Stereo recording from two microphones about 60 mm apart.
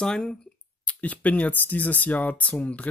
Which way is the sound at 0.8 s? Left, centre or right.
Left.